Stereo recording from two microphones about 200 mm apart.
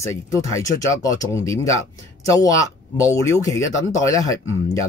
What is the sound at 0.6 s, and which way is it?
Speech, 15° left (ahead or behind).